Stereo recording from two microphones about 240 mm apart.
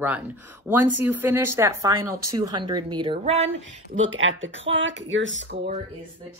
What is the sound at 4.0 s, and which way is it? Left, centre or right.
Speech, right.